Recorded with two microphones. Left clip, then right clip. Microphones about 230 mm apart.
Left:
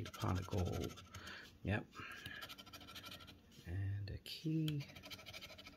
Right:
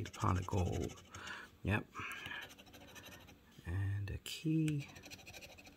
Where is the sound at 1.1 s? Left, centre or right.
Right.